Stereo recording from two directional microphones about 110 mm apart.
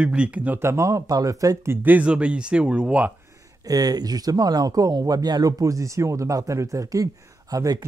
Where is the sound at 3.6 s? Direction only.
35° right (ahead or behind).